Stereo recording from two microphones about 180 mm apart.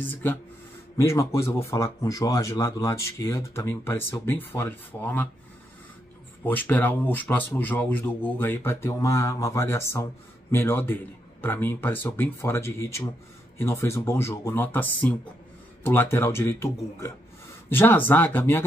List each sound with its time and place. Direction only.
0.0 s speech: 10° left (ahead or behind)
6.4 s speech: 10° left (ahead or behind)